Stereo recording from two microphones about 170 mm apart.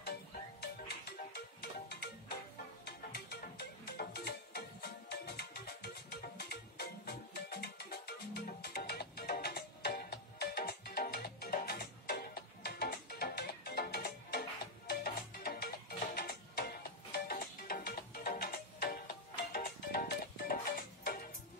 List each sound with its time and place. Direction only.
0.6 s music: 75° left (ahead or behind); by 21.3 s 60° left (ahead or behind)